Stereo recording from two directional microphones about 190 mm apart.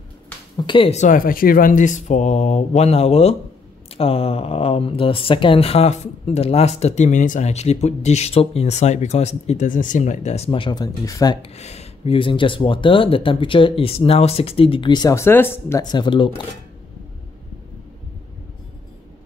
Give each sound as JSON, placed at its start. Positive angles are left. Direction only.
{"t": 0.6, "sound": "speech", "side_deg": 25}
{"t": 11.4, "sound": "speech", "side_deg": 35}